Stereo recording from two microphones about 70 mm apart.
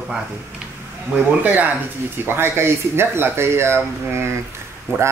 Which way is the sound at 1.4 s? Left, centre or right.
Right.